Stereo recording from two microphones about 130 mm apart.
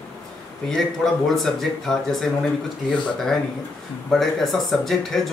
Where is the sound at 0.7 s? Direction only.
5° left (ahead or behind).